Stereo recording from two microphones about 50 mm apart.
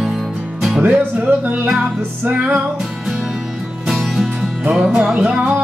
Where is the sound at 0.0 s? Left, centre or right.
Centre.